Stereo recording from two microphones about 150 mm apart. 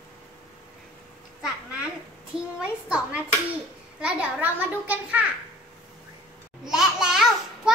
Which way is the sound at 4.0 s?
10° right (ahead or behind).